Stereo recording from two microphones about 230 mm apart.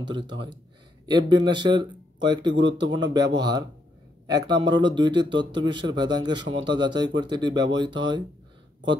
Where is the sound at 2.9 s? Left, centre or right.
Centre.